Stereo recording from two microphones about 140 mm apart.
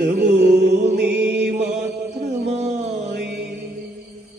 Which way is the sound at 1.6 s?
55° right (ahead or behind).